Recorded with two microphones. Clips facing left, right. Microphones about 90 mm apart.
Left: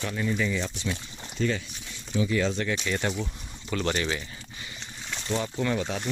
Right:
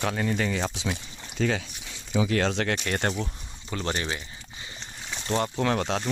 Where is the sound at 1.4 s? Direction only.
90° right.